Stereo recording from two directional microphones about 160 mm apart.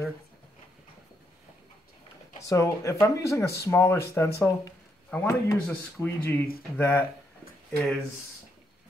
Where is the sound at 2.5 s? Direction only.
20° left (ahead or behind).